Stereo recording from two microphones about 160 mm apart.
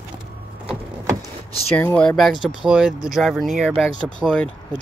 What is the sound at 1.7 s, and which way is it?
Speech, 10° left (ahead or behind).